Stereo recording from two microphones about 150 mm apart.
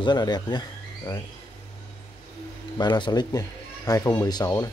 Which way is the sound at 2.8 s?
30° left (ahead or behind).